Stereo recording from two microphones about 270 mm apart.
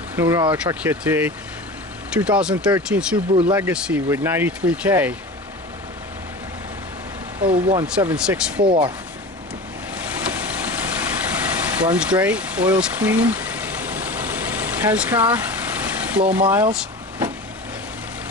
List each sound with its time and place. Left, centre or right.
0.1 s speech: centre
7.4 s speech: centre
7.8 s speech: centre
8.6 s speech: centre
10.2 s vehicle: centre